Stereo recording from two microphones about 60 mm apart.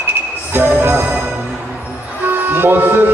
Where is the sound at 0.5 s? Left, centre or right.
Right.